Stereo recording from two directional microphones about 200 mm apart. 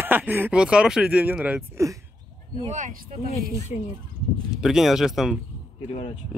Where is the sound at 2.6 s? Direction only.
35° right (ahead or behind).